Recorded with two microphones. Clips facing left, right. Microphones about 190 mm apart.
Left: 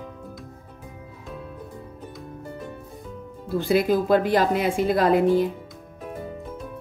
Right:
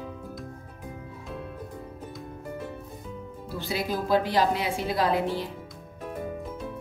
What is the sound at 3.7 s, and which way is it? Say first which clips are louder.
A woman's voice: left 6 dB; 50° left (ahead or behind).